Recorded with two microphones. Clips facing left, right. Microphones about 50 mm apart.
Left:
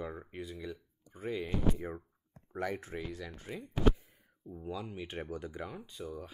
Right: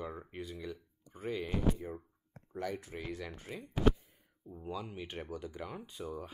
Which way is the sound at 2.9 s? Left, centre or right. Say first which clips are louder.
Left 1 dB; centre.